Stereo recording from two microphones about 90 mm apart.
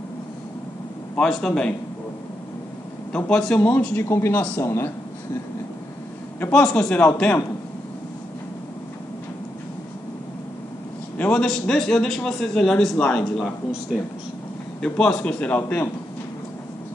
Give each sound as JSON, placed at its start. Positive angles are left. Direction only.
{"t": 1.1, "sound": "a man's voice", "side_deg": 5}
{"t": 3.1, "sound": "a man's voice", "side_deg": 10}
{"t": 6.5, "sound": "a man's voice", "side_deg": 5}
{"t": 6.9, "sound": "a man's voice", "side_deg": 15}
{"t": 11.1, "sound": "a man's voice", "side_deg": 15}
{"t": 11.4, "sound": "a man's voice", "side_deg": 5}
{"t": 14.8, "sound": "a man's voice", "side_deg": 5}